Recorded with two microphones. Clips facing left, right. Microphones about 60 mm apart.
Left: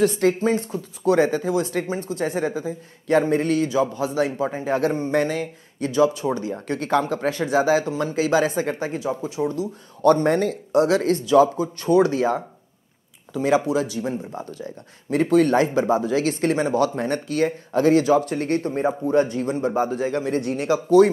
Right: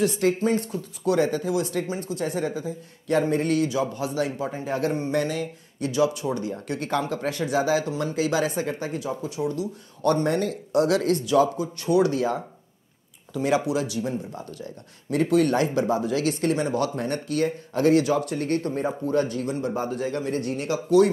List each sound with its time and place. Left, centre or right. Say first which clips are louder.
0.0 s speech: left 3 dB; left
0.4 s speech: left 2 dB; left
6.7 s speech: left 5 dB; left
7.2 s speech: left 3 dB; left